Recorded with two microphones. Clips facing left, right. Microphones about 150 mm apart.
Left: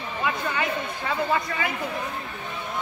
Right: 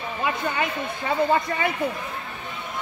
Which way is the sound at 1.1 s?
25° right (ahead or behind).